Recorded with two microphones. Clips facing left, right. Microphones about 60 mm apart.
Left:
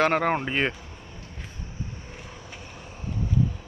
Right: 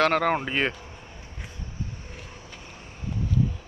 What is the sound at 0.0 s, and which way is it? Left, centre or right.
Speech, centre.